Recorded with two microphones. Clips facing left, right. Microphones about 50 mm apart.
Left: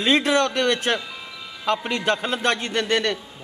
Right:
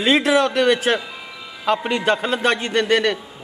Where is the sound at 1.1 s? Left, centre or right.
Centre.